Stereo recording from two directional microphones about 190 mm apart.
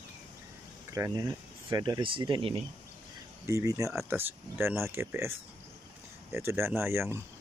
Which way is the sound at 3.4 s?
15° right (ahead or behind).